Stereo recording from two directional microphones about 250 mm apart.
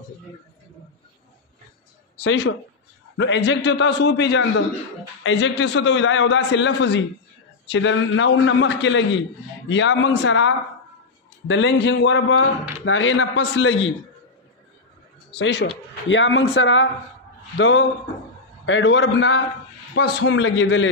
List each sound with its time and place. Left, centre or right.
2.1 s a man's voice: left
15.3 s a man's voice: left